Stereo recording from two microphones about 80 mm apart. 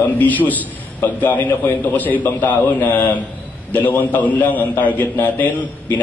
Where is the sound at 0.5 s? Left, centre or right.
Left.